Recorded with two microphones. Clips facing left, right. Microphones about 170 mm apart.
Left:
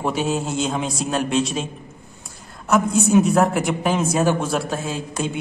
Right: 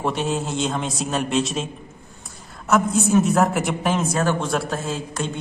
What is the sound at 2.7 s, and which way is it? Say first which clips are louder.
A man's voice: left 1 dB; centre (ahead or behind).